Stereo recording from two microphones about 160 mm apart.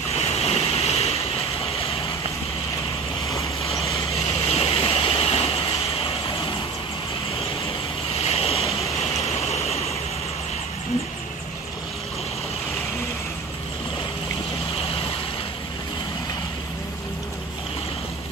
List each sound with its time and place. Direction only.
0.1 s waves: 40° left (ahead or behind)
4.1 s vehicle: 40° left (ahead or behind)
8.1 s waves: 40° left (ahead or behind)
9.5 s vehicle: 40° left (ahead or behind)